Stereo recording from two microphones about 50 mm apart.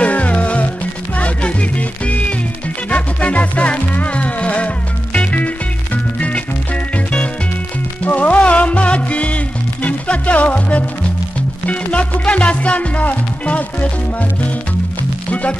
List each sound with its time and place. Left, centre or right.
0.0 s music: left